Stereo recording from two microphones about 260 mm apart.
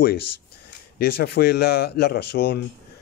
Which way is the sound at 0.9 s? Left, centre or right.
Left.